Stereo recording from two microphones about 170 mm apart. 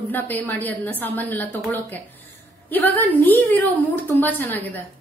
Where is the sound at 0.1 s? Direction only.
10° left (ahead or behind).